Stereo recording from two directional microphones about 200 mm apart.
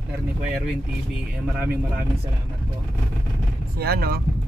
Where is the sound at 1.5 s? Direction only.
10° right (ahead or behind).